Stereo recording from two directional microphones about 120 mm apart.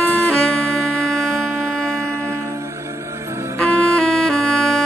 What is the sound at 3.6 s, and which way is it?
Music, 5° left (ahead or behind).